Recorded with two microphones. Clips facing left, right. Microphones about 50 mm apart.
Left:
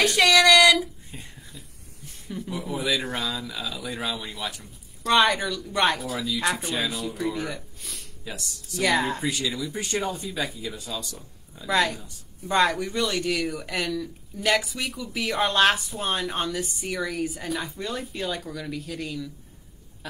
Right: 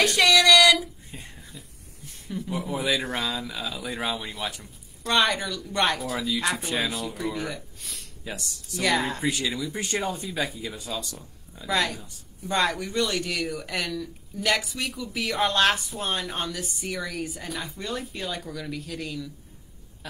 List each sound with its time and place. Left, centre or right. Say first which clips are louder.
0.0 s speech: left 1 dB; centre
1.1 s a sound: even; centre
2.2 s a man's voice: right 2 dB; centre
2.7 s speech: even; centre
5.0 s a man's voice: left 3 dB; centre
9.2 s speech: right 1 dB; right
10.7 s speech: even; centre
11.6 s a man's voice: left 3 dB; centre